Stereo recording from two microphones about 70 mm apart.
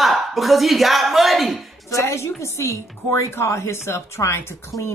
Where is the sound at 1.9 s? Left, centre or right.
Left.